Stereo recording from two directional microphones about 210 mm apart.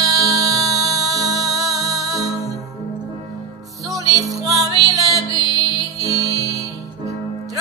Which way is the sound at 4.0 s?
15° right (ahead or behind).